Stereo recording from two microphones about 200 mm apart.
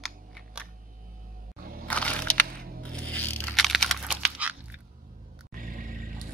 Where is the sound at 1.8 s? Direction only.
5° left (ahead or behind).